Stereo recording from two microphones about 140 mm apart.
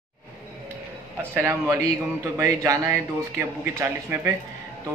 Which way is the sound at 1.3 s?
20° right (ahead or behind).